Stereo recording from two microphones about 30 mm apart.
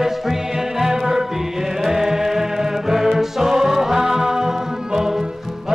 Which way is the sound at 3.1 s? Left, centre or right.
Centre.